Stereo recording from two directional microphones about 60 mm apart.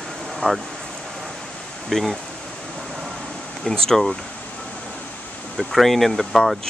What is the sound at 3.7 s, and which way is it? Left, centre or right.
Speech, centre.